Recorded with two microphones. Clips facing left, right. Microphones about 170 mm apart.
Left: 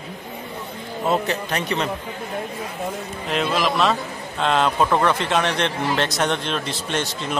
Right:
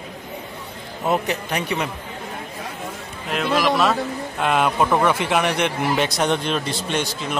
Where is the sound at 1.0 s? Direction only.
15° right (ahead or behind).